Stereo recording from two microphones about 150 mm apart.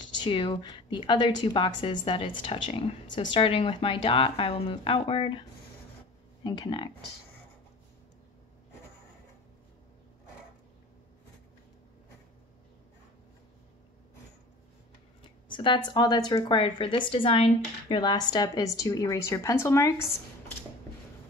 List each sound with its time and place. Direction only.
0.0 s a woman's voice: 30° left (ahead or behind)
6.4 s a woman's voice: 30° left (ahead or behind)
15.2 s a woman's voice: 35° left (ahead or behind); by 20.5 s 20° left (ahead or behind)